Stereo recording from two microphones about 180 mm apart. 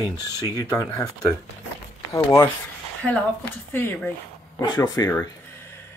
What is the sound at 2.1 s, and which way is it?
Speech, 15° left (ahead or behind).